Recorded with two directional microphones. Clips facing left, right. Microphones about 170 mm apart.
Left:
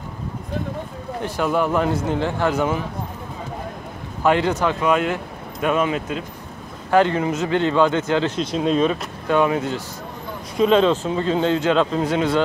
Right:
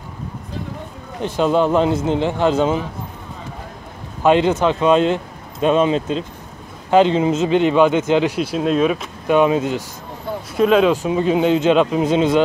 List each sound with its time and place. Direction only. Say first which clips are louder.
1.2 s speech: right 5 dB; 20° right (ahead or behind)
4.2 s speech: right 4 dB; 20° right (ahead or behind); by 9.0 s 5° right (ahead or behind)
9.3 s speech: right 4 dB; 20° right (ahead or behind)
10.5 s speech: right 2 dB; 5° right (ahead or behind)